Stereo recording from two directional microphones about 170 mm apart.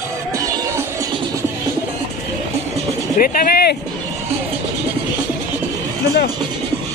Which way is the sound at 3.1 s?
55° left (ahead or behind).